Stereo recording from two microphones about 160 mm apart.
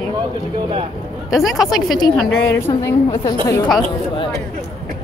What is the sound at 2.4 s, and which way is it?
Speech, 15° left (ahead or behind).